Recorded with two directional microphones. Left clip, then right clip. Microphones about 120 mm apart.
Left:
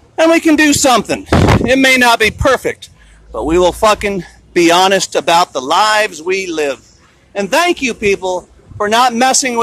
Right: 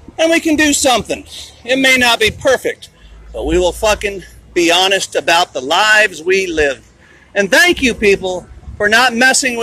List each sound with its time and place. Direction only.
0.1 s speech: 50° left (ahead or behind)
4.1 s speech: 70° left (ahead or behind)
5.2 s speech: 35° left (ahead or behind)
8.2 s a man's voice: 35° left (ahead or behind)